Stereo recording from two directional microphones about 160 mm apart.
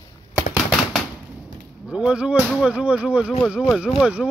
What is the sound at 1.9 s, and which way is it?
Speech, 5° right (ahead or behind).